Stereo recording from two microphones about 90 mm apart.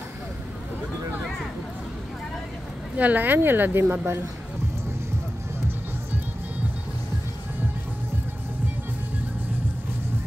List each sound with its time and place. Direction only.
3.0 s a woman's voice: 20° right (ahead or behind)